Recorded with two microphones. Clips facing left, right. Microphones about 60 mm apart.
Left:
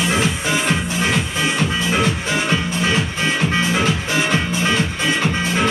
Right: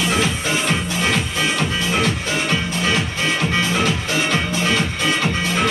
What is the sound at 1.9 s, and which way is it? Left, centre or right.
Music, left.